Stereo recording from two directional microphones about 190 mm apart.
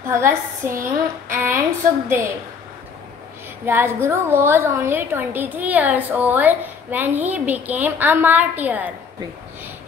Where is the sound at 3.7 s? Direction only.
10° right (ahead or behind).